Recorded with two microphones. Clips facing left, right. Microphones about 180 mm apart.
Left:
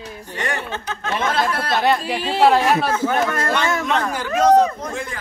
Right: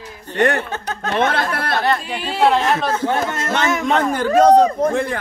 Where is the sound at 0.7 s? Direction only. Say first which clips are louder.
Right 2 dB; 40° right (ahead or behind).